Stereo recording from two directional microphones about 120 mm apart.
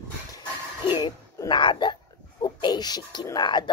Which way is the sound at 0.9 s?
40° left (ahead or behind).